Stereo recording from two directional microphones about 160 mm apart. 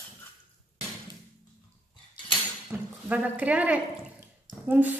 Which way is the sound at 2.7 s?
10° right (ahead or behind).